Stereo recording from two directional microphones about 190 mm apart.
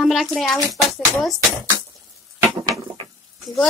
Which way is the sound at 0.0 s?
Centre (ahead or behind).